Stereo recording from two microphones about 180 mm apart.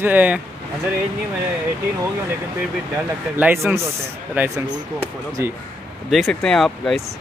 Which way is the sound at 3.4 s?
10° right (ahead or behind).